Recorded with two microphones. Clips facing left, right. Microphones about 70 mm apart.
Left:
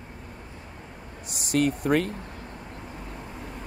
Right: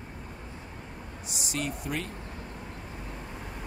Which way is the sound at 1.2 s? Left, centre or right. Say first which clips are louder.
Left 10 dB; left.